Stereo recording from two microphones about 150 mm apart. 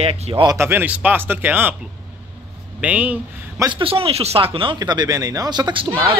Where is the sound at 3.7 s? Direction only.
40° right (ahead or behind).